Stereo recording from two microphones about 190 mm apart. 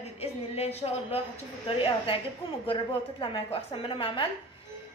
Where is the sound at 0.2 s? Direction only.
30° left (ahead or behind).